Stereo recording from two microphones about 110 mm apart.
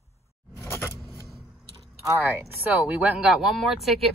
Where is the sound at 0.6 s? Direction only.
20° left (ahead or behind).